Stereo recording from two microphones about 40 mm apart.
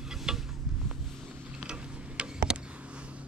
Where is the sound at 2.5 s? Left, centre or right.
Centre.